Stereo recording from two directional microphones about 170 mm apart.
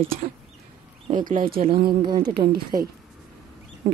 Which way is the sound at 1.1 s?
50° right (ahead or behind).